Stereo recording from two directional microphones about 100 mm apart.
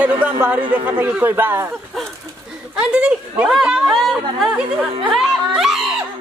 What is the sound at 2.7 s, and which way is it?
Speech, 10° right (ahead or behind).